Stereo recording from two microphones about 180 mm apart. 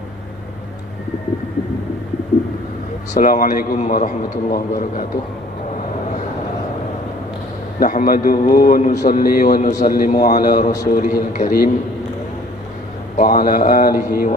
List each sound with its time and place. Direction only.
3.2 s a man's voice: 50° left (ahead or behind)
7.8 s a man's voice: 50° left (ahead or behind)
13.1 s a man's voice: 50° left (ahead or behind)